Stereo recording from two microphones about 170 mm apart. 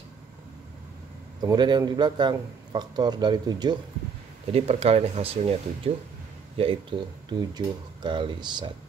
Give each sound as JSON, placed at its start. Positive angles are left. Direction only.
{"t": 1.4, "sound": "a man's voice", "side_deg": -25}
{"t": 4.5, "sound": "a man's voice", "side_deg": -35}